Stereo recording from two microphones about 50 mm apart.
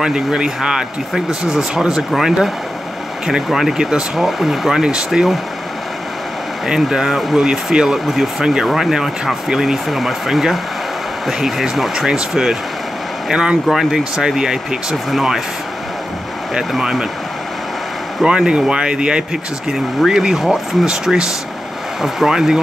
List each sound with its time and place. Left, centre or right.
0.0 s speech: centre
6.7 s speech: centre
13.3 s speech: centre
13.7 s speech: centre
16.7 s speech: centre
18.2 s speech: centre